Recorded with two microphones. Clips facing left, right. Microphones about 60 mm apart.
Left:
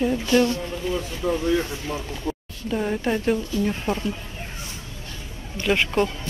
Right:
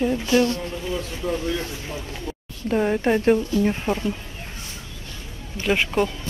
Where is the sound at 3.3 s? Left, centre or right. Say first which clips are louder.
Right 3 dB; centre.